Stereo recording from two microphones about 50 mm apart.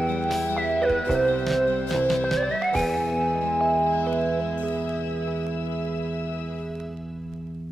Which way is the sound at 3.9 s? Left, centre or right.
Left.